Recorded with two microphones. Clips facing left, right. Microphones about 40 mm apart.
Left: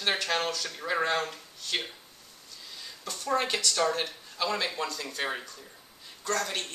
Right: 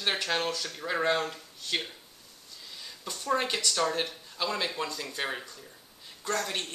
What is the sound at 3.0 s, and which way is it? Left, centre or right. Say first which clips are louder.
A man's voice: even; centre.